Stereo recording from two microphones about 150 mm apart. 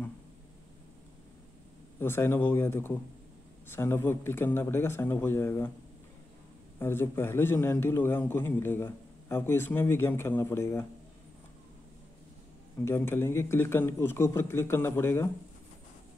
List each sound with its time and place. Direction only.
2.0 s a man's voice: 15° left (ahead or behind)
6.8 s a man's voice: 15° left (ahead or behind)
12.8 s a man's voice: 15° left (ahead or behind)